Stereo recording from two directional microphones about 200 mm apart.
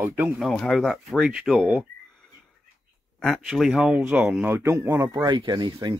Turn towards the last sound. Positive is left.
turn(degrees=-20)  # may be behind; listen again after turning